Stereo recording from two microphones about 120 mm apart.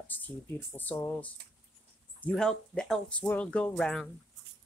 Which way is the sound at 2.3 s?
5° left (ahead or behind).